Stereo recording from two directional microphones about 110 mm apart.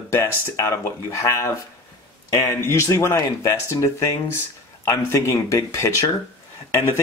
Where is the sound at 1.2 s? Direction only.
25° left (ahead or behind).